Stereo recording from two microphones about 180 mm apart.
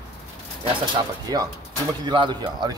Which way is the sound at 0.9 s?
20° right (ahead or behind).